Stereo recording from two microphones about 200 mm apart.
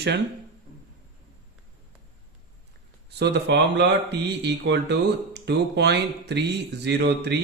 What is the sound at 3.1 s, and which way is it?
Speech, 55° right (ahead or behind).